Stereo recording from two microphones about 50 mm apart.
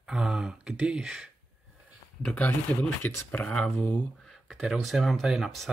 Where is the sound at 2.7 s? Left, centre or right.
Left.